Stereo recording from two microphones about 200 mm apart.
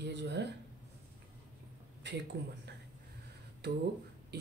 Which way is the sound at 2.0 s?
60° right (ahead or behind).